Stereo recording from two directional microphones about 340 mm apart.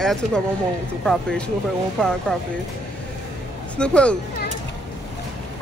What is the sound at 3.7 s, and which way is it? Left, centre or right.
Speech, centre.